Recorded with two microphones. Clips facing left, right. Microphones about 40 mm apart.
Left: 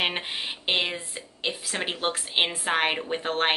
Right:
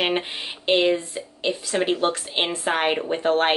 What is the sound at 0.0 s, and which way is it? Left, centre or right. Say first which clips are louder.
Speech: right 4 dB; centre.